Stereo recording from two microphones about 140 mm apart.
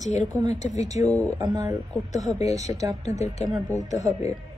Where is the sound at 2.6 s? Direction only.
55° left (ahead or behind).